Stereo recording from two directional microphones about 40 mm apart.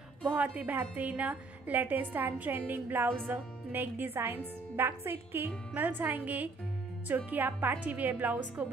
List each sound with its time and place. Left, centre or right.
0.3 s a woman's voice: right
5.8 s a woman's voice: right